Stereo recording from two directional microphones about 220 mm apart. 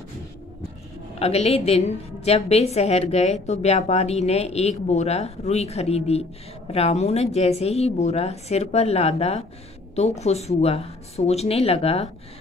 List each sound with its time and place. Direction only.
1.2 s a woman's voice: 30° left (ahead or behind)